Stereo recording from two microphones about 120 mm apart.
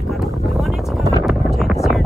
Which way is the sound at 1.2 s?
Centre (ahead or behind).